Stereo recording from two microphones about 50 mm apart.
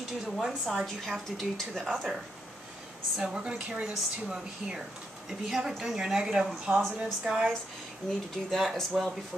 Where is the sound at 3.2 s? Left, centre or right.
Centre.